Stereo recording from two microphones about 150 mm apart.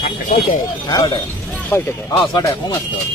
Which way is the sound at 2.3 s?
30° left (ahead or behind).